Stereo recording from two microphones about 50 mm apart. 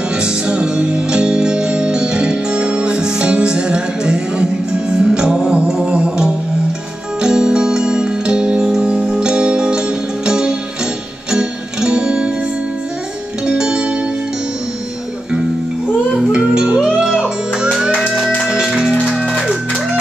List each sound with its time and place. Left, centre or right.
0.2 s music: centre
13.5 s music: centre
16.3 s music: centre
18.1 s music: centre
18.5 s music: centre